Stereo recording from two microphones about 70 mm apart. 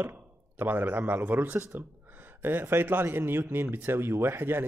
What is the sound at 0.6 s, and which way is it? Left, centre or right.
A man's voice, right.